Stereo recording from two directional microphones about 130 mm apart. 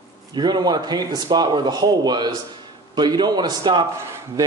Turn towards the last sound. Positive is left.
turn(degrees=-20)  # may be behind; listen again after turning